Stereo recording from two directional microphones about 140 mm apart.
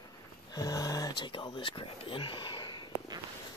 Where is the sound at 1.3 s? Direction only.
35° left (ahead or behind).